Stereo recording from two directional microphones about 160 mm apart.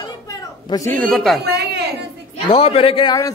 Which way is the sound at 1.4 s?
90° right.